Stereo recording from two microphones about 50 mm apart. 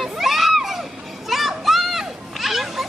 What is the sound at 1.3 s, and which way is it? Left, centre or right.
Children playing, centre.